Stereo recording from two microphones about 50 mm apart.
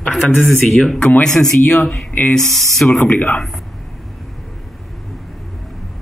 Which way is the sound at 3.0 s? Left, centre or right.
Left.